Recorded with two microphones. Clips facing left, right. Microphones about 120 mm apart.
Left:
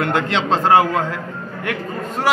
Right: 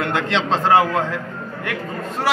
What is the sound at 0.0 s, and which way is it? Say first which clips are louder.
A man's voice: left 2 dB; 5° left (ahead or behind).